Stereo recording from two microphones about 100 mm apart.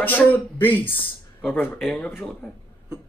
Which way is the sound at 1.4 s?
10° left (ahead or behind).